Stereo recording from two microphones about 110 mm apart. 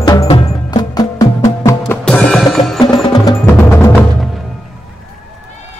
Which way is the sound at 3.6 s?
25° left (ahead or behind).